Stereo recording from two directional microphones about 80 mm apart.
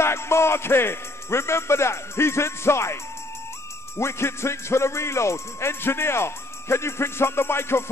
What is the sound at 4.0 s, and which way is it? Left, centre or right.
Music, left.